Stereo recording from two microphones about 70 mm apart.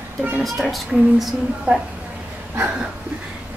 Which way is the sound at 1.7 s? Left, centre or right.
Centre.